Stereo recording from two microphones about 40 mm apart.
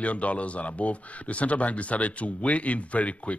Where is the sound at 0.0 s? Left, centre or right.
Left.